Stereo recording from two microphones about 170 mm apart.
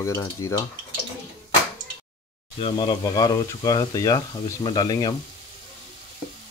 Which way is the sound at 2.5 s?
30° left (ahead or behind).